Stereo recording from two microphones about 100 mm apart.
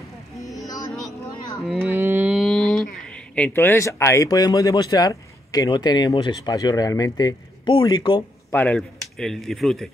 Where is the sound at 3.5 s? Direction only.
25° left (ahead or behind).